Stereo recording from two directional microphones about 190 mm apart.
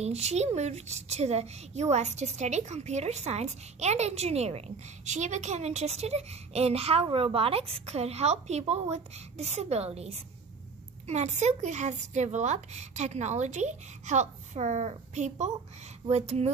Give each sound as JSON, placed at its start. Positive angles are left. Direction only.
{"t": 0.0, "sound": "a woman's voice", "side_deg": -35}